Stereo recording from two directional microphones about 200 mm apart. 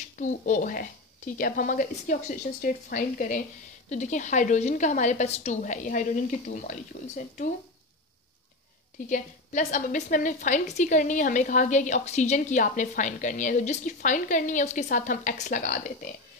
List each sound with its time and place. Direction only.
0.1 s a woman's voice: 40° left (ahead or behind)
9.1 s a woman's voice: 40° left (ahead or behind)